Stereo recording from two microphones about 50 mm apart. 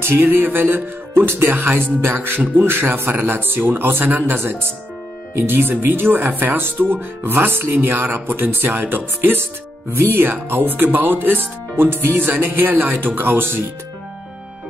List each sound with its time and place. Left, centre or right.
0.0 s speech: right